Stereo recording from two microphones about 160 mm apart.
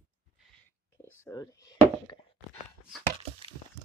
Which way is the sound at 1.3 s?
20° left (ahead or behind).